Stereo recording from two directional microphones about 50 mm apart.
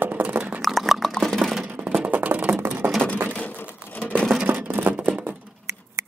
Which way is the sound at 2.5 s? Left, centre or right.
Right.